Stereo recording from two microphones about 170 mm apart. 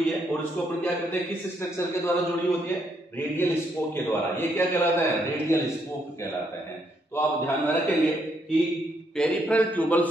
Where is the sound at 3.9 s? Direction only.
15° left (ahead or behind).